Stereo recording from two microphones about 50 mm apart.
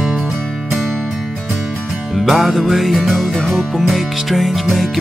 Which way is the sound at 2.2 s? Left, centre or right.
Centre.